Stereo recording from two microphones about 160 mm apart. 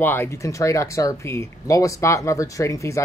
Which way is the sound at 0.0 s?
15° left (ahead or behind).